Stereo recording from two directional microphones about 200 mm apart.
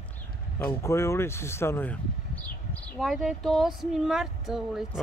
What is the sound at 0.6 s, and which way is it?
Speech, 15° left (ahead or behind).